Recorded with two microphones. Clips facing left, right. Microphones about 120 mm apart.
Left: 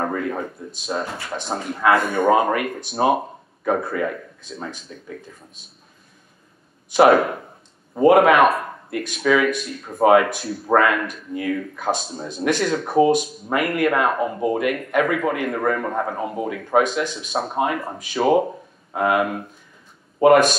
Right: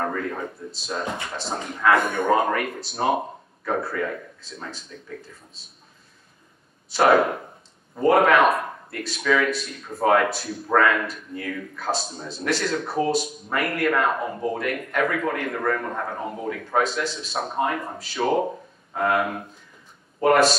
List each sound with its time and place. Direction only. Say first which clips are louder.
0.0 s speech: left 3 dB; 15° left (ahead or behind)
4.9 s speech: left 2 dB; 15° left (ahead or behind)
6.9 s speech: left 4 dB; 15° left (ahead or behind)
8.5 s a sound: left 1 dB; centre (ahead or behind)
9.0 s speech: left 3 dB; 15° left (ahead or behind)